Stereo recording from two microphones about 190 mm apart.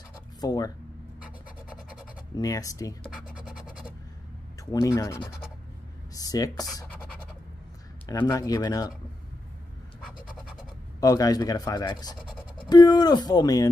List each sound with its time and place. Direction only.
0.4 s speech: 20° left (ahead or behind)
2.3 s speech: 20° left (ahead or behind)
3.3 s scratch: 5° right (ahead or behind)
4.6 s speech: 20° left (ahead or behind)
8.1 s speech: 20° left (ahead or behind)
11.0 s speech: 20° left (ahead or behind)